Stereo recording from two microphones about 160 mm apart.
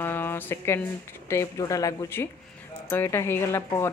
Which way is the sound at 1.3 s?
20° left (ahead or behind).